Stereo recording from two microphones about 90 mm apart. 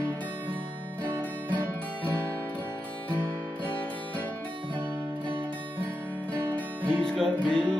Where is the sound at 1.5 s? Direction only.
15° left (ahead or behind).